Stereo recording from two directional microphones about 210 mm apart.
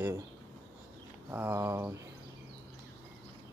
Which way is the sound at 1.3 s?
10° right (ahead or behind).